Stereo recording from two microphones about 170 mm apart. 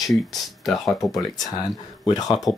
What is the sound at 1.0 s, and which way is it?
Speech, 20° left (ahead or behind).